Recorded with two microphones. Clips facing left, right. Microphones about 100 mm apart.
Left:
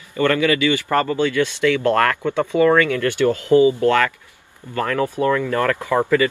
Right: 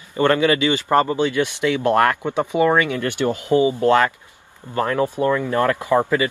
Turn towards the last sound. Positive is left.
turn(degrees=-20)  # may be behind; listen again after turning